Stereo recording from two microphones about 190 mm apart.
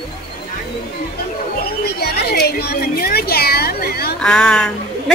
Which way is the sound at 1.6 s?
55° left (ahead or behind).